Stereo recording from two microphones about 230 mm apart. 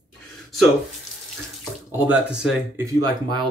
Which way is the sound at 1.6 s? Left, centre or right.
Centre.